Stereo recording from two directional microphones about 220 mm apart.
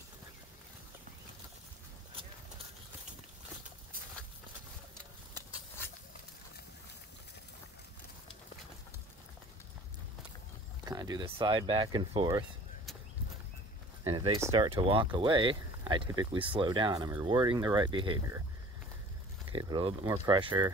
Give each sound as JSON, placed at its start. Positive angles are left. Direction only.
{"t": 10.9, "sound": "speech", "side_deg": -20}
{"t": 14.0, "sound": "speech", "side_deg": -25}
{"t": 19.5, "sound": "speech", "side_deg": -20}